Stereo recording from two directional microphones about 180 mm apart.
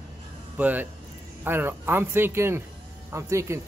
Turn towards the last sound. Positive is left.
turn(degrees=-15)  # may be behind; listen again after turning